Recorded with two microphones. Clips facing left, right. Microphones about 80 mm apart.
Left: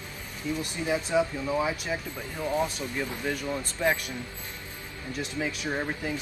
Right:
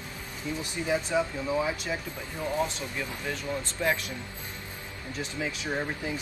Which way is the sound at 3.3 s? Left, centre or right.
Centre.